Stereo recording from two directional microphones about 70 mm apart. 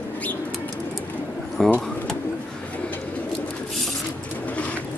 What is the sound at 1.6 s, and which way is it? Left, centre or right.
Speech, centre.